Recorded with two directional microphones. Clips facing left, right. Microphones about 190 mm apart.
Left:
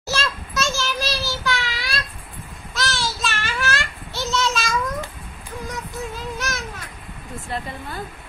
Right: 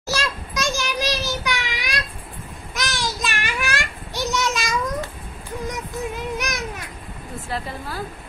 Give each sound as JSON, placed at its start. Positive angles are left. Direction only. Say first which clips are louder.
{"t": 0.0, "sound": "child singing", "louder": "even", "side_deg": -15}
{"t": 2.7, "sound": "a sound", "louder": "left 1 dB", "side_deg": -15}
{"t": 6.3, "sound": "children playing", "louder": "right 2 dB", "side_deg": -15}
{"t": 7.4, "sound": "a woman's voice", "louder": "right 1 dB", "side_deg": 0}